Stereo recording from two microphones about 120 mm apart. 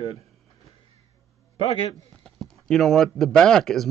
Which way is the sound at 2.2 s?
Centre (ahead or behind).